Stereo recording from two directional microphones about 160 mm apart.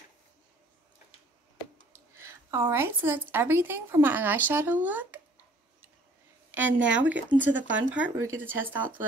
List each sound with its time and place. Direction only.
2.1 s a woman's voice: 15° right (ahead or behind)
6.5 s a woman's voice: 10° right (ahead or behind)